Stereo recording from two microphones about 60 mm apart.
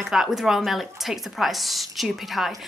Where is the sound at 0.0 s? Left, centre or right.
Centre.